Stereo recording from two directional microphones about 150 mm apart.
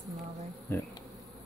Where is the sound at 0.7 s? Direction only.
15° left (ahead or behind).